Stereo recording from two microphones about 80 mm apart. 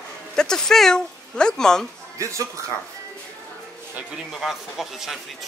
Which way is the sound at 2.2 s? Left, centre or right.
Right.